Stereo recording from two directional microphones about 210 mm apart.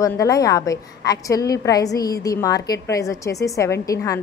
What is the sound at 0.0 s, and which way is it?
A woman's voice, 15° left (ahead or behind).